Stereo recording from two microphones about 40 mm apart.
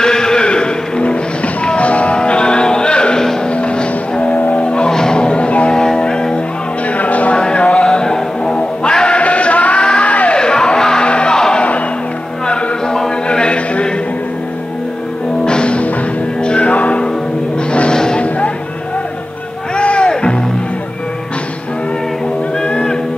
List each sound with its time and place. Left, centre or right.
0.0 s music: centre
5.7 s music: centre
7.0 s music: left
7.3 s music: left
9.8 s a sound: left
10.3 s music: centre
12.4 s a sound: centre
15.4 s music: left
17.9 s music: centre
19.8 s music: left